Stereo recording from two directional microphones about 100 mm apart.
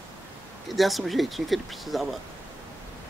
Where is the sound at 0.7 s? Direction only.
Centre (ahead or behind).